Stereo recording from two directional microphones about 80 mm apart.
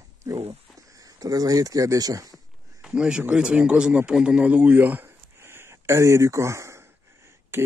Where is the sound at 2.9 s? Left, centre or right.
Centre.